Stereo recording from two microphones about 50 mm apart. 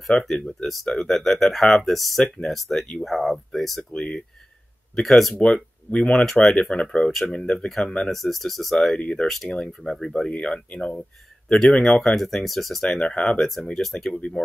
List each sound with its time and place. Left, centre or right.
0.0 s speech: centre
2.2 s speech: centre
2.5 s speech: centre
5.0 s speech: centre
5.4 s speech: centre
7.6 s speech: centre
9.0 s speech: left; by 12.8 s centre
12.8 s speech: centre
13.7 s speech: centre